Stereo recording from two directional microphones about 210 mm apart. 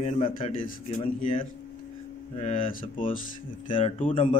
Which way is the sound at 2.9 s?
40° left (ahead or behind).